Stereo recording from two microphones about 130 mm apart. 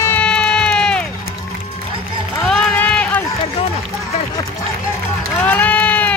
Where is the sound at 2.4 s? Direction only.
10° left (ahead or behind).